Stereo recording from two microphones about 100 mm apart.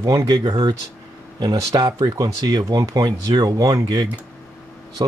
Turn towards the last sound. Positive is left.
turn(degrees=-50)  # may be behind; listen again after turning